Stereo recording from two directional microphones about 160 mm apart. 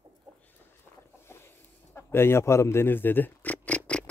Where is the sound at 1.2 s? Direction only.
15° left (ahead or behind).